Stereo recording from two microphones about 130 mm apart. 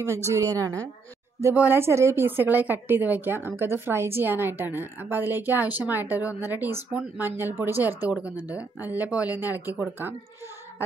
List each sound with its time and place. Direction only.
0.3 s a woman's voice: 25° right (ahead or behind)
1.4 s a woman's voice: 15° right (ahead or behind)